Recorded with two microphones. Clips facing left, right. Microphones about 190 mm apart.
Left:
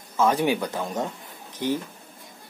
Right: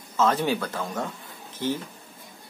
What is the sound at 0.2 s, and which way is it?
Speech, 15° left (ahead or behind).